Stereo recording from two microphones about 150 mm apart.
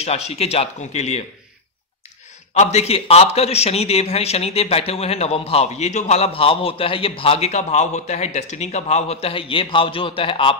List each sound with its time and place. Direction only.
0.0 s a man's voice: 45° left (ahead or behind)
2.5 s a man's voice: 50° left (ahead or behind)